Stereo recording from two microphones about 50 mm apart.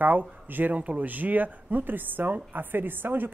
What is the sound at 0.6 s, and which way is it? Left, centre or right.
A woman's voice, right.